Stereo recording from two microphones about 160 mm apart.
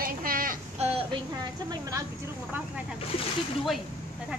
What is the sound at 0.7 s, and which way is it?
Speech, 40° right (ahead or behind).